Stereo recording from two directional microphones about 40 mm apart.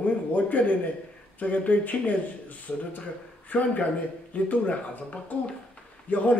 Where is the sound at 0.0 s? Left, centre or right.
Left.